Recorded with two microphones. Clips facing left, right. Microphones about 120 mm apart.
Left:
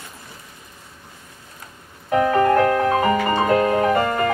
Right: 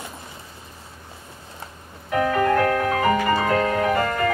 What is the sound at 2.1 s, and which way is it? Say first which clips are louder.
Music: left 3 dB; 30° left (ahead or behind).